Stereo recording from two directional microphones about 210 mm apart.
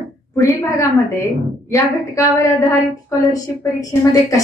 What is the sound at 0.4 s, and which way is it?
A woman's voice, 15° left (ahead or behind).